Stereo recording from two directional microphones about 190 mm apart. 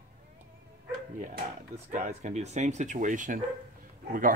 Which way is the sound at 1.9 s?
35° right (ahead or behind).